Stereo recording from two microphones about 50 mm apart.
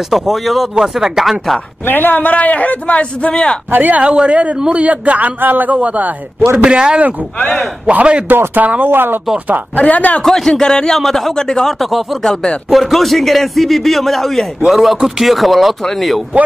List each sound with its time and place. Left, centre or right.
0.1 s a man's voice: centre
1.9 s a man's voice: left
3.7 s a man's voice: right
4.0 s a woman's voice: right
6.6 s a woman's voice: centre; by 8.9 s right
8.9 s speech: right
9.8 s a man's voice: left
10.2 s a man's voice: centre
11.9 s a man's voice: centre
12.2 s speech: centre
12.6 s a man's voice: centre